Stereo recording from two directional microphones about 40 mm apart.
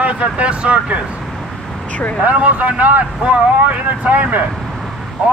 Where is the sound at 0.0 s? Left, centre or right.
Right.